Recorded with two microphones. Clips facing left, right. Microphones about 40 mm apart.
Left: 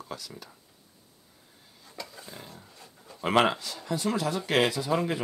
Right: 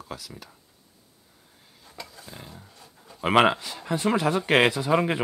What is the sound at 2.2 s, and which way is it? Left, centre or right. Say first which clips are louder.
Dog: right 1 dB; centre.